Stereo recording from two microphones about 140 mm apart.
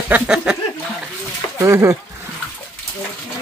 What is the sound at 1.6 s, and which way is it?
Speech, 20° right (ahead or behind).